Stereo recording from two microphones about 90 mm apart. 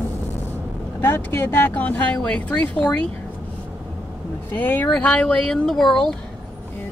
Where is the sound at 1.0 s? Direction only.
25° left (ahead or behind).